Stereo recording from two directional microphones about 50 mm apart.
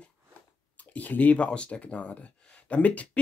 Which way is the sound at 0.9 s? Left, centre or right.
Left.